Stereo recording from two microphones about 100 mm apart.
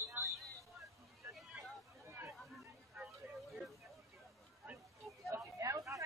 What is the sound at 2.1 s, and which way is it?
Chatter, 20° right (ahead or behind).